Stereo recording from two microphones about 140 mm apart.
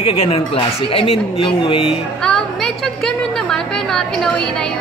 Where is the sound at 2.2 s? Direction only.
5° left (ahead or behind).